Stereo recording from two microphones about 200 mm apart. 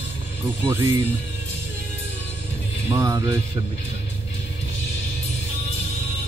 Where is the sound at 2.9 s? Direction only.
15° right (ahead or behind).